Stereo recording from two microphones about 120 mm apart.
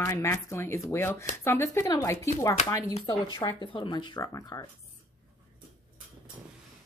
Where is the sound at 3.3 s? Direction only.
40° left (ahead or behind).